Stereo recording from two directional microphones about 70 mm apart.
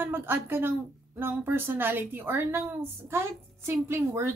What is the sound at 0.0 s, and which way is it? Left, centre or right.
A woman's voice, right.